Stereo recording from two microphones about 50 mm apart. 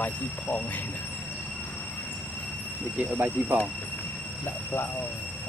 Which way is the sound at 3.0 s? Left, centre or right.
Right.